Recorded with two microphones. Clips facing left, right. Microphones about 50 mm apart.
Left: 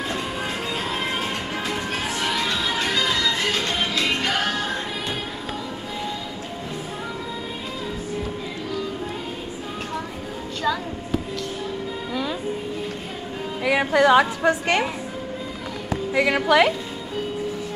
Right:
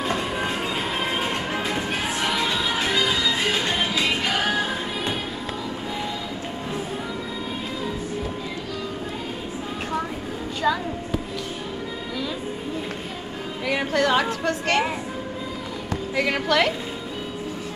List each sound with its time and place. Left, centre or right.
0.9 s music: centre
13.7 s music: centre
14.4 s a woman's voice: centre
15.9 s a woman's voice: centre